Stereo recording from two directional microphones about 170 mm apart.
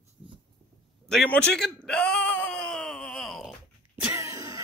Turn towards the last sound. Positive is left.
turn(degrees=-20)  # may be behind; listen again after turning